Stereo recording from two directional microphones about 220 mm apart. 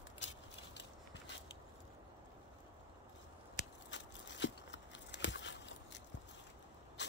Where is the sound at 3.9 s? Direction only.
55° left (ahead or behind).